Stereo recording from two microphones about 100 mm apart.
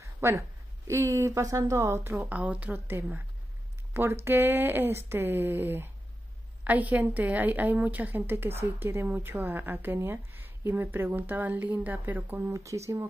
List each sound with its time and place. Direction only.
0.0 s a woman's voice: 25° right (ahead or behind)
12.5 s speech: 30° right (ahead or behind)